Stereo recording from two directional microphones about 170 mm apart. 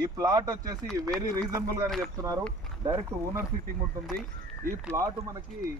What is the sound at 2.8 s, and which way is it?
Speech, 15° right (ahead or behind).